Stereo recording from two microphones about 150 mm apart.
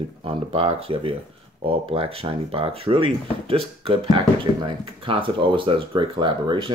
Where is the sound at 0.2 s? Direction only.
40° right (ahead or behind).